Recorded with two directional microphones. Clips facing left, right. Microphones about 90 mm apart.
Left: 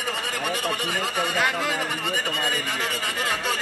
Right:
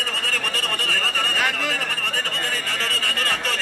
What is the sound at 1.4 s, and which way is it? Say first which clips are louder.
A man's voice: left 1 dB; 5° left (ahead or behind).